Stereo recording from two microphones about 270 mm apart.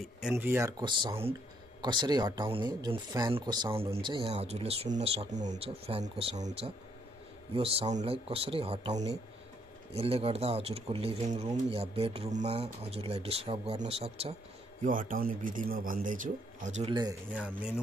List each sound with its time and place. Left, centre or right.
0.2 s speech: centre